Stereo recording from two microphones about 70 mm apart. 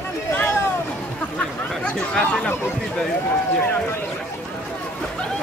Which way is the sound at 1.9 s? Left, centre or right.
Centre.